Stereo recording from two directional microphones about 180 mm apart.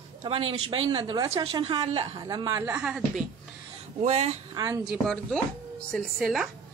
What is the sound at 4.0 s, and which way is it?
Speech, 35° right (ahead or behind).